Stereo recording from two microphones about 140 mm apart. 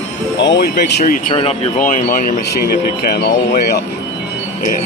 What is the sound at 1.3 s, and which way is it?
Speech, 45° left (ahead or behind).